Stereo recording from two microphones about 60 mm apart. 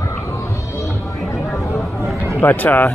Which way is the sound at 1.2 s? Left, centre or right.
Left.